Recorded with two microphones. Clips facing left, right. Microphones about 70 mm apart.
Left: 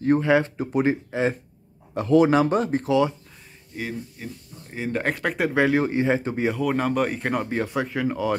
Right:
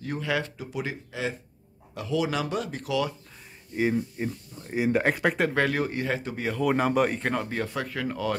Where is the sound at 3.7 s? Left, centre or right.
Right.